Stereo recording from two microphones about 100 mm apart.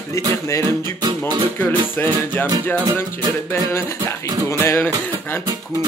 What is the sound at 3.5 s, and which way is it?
Music, 25° left (ahead or behind).